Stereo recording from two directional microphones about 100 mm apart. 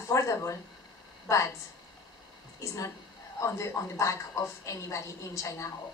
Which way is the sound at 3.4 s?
30° left (ahead or behind).